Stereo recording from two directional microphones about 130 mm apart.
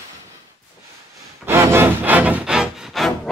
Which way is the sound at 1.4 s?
20° right (ahead or behind).